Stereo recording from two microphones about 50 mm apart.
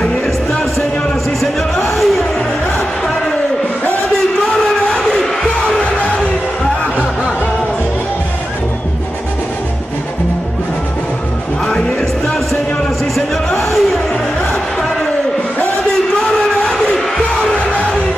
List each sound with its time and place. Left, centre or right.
0.0 s music: centre
4.8 s music: centre
11.6 s music: centre
13.1 s a sound: centre
16.2 s a sound: centre
16.7 s music: centre
17.6 s music: left